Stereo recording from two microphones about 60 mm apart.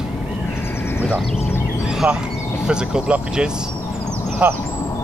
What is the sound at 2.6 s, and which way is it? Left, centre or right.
Speech, centre.